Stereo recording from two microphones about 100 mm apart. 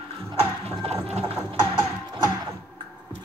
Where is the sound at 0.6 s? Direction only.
85° right.